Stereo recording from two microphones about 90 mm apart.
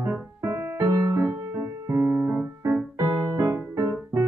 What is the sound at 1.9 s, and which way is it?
Keyboard, 25° right (ahead or behind).